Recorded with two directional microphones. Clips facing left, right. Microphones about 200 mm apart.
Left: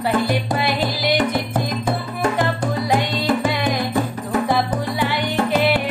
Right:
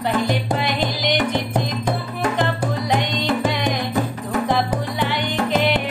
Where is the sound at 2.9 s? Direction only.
5° left (ahead or behind).